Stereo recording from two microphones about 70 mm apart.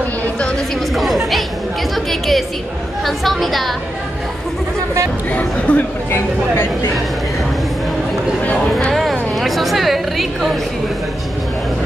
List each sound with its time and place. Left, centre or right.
0.9 s chatter: centre
2.0 s a woman's voice: centre
5.3 s speech: left
6.1 s speech: left
8.9 s a sound: centre